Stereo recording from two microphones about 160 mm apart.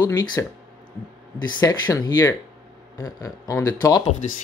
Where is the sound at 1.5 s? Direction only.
25° left (ahead or behind).